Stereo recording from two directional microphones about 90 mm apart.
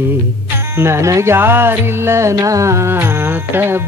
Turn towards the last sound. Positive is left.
turn(degrees=-25)  # may be behind; listen again after turning